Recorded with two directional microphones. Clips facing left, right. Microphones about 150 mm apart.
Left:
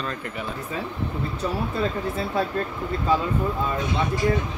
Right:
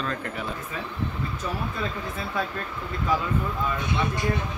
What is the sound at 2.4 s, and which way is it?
Speech, 30° left (ahead or behind).